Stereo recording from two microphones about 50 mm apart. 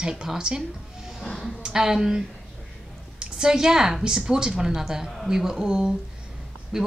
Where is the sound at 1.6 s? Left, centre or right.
Centre.